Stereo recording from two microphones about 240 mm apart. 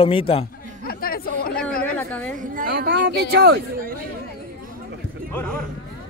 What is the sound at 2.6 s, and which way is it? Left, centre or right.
Speech, right.